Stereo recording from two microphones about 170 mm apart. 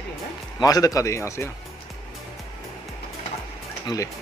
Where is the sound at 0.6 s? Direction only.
20° left (ahead or behind).